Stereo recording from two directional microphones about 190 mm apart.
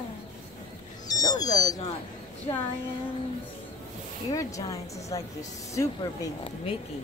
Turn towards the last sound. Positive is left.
turn(degrees=15)  # may be behind; listen again after turning